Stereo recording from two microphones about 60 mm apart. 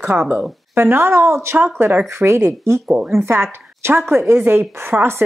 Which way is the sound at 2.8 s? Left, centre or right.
Right.